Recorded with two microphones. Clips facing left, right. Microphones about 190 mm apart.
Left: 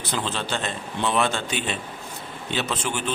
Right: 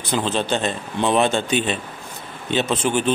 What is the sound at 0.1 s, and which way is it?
Speech, 20° right (ahead or behind).